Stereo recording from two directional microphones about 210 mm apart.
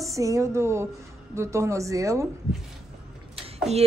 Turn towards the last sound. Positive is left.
turn(degrees=-30)  # may be behind; listen again after turning